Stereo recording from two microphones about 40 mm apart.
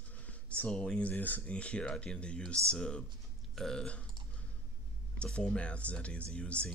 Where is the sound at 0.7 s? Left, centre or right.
Left.